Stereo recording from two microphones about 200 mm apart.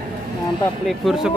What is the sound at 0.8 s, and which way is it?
Speech, centre (ahead or behind).